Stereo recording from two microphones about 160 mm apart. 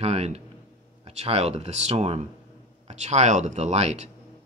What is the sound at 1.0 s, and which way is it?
Speech, 40° right (ahead or behind).